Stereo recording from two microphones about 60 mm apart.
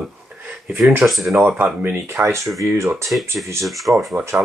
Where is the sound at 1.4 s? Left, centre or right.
Right.